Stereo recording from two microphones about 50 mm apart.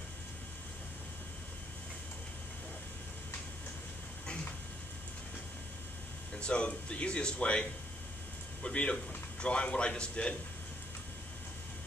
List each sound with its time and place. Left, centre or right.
6.3 s speech: left
8.6 s speech: left